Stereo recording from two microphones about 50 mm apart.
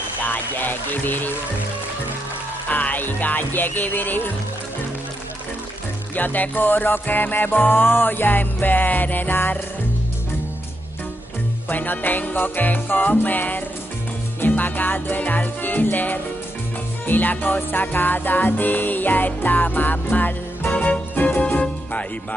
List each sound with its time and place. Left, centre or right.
0.2 s music: left
2.7 s music: left
6.1 s music: left
11.7 s music: left
20.7 s music: left
21.1 s music: left